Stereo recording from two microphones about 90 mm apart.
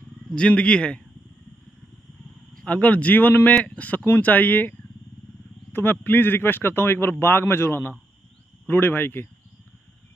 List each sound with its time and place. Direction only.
0.3 s speech: 10° left (ahead or behind)
2.6 s a man's voice: 15° left (ahead or behind)